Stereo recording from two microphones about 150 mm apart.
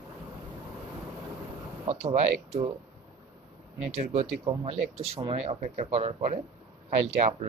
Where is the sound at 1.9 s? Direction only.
50° right (ahead or behind).